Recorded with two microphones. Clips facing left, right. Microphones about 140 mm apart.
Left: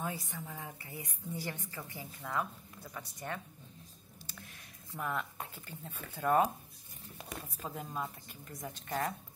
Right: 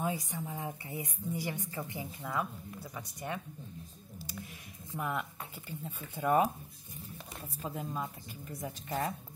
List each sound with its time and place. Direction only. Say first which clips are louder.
0.0 s a woman's voice: right 5 dB; 15° right (ahead or behind)
2.2 s a woman's voice: even; 5° right (ahead or behind)
4.9 s a woman's voice: right 1 dB; 15° right (ahead or behind)
7.6 s a woman's voice: right 3 dB; centre (ahead or behind)